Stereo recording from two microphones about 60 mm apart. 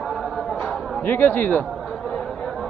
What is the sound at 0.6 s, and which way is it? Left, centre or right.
Chatter, centre.